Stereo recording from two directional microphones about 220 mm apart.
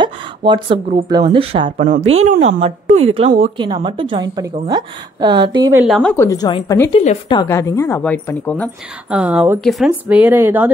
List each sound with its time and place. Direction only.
0.0 s a woman's voice: 20° right (ahead or behind)
5.9 s a woman's voice: centre (ahead or behind)
6.1 s a woman's voice: 15° left (ahead or behind)
7.0 s a woman's voice: 30° left (ahead or behind)
7.3 s a woman's voice: 15° left (ahead or behind)
9.1 s speech: 5° right (ahead or behind)